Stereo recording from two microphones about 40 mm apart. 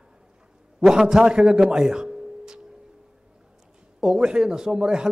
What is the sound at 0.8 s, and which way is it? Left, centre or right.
A man's voice, centre.